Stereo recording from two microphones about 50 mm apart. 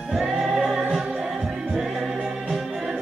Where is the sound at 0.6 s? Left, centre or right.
Centre.